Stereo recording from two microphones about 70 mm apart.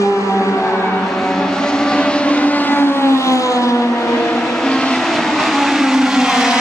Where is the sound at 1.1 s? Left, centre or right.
Centre; by 3.9 s left.